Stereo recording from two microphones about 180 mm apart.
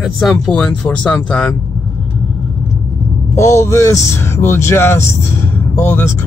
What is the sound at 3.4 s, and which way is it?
Speech, 15° left (ahead or behind).